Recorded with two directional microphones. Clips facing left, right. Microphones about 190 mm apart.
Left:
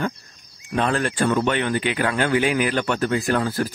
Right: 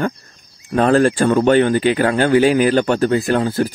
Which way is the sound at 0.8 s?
40° right (ahead or behind).